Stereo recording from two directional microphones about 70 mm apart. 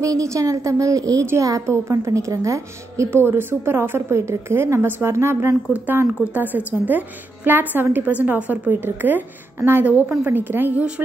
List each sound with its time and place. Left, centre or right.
0.0 s a woman's voice: right
6.5 s a woman's voice: right
9.8 s a woman's voice: right